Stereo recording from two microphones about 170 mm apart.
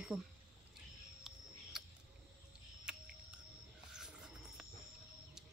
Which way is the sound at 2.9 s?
5° right (ahead or behind).